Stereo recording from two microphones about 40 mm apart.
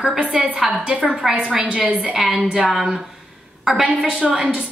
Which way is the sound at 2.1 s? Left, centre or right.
Centre.